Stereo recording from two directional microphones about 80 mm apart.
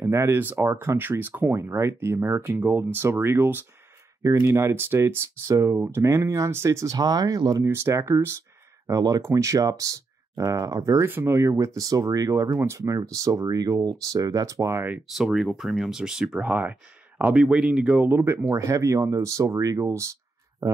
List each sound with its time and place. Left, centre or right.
0.0 s speech: right
4.2 s speech: right
7.0 s speech: right
7.6 s speech: right
11.1 s speech: right
15.1 s speech: centre
18.0 s speech: right